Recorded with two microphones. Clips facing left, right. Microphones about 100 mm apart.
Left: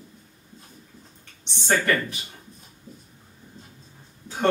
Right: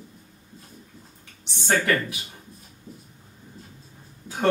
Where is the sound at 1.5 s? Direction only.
Centre (ahead or behind).